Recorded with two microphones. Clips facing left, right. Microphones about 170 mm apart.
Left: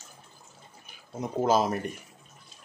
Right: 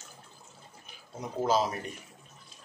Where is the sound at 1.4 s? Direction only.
55° left (ahead or behind).